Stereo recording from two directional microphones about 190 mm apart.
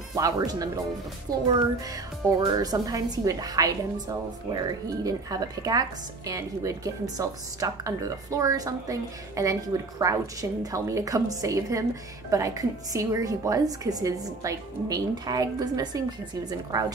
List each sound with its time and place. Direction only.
0.1 s a woman's voice: 20° right (ahead or behind)